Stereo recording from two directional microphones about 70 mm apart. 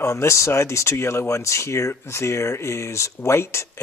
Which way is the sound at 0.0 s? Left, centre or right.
Left.